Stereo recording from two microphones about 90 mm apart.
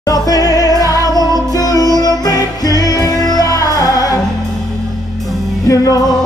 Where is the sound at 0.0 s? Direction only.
40° left (ahead or behind).